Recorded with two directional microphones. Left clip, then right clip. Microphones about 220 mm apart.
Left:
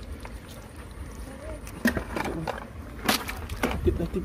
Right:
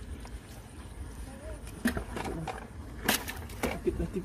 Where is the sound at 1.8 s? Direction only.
25° left (ahead or behind).